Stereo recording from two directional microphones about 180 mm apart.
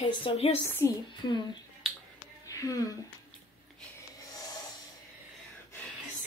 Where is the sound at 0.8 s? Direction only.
15° left (ahead or behind).